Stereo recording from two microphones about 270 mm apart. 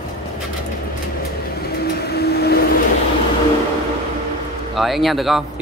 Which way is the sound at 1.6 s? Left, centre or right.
Left.